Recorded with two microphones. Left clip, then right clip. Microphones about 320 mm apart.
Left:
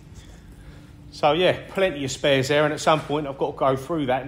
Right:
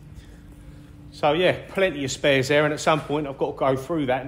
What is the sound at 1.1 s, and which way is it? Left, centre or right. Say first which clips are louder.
Speech: left 1 dB; centre.